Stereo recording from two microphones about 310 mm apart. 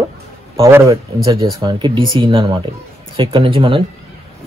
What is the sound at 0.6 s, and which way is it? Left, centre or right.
A man's voice, centre.